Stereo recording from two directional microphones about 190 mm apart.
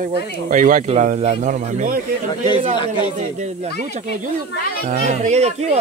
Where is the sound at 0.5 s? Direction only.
45° right (ahead or behind).